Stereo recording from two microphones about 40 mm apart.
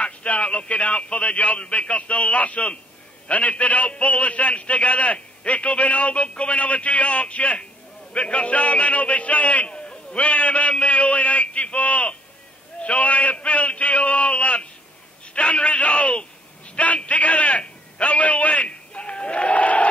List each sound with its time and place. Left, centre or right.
0.0 s a man's voice: left